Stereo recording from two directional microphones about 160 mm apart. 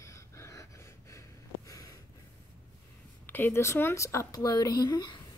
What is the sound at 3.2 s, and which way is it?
Speech, 10° left (ahead or behind).